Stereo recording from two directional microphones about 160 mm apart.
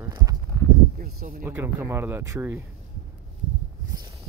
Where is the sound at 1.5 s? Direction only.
15° right (ahead or behind).